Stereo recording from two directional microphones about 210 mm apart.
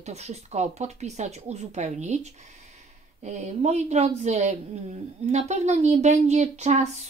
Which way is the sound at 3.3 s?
35° right (ahead or behind).